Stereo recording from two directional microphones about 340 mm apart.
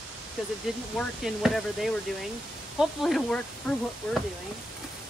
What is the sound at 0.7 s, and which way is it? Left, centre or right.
Speech, centre.